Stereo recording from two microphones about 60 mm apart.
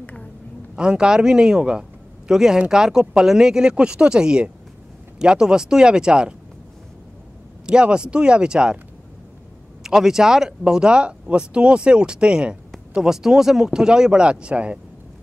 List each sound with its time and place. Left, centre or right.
0.0 s a sound: centre
0.7 s a man's voice: centre
7.6 s speech: centre
9.8 s speech: centre